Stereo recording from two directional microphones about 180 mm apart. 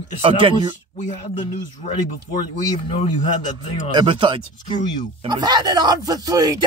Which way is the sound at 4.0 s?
25° right (ahead or behind).